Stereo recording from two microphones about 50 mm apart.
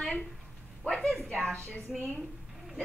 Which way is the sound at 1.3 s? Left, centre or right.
Left.